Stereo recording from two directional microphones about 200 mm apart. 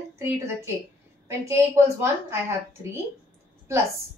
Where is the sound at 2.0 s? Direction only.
10° right (ahead or behind).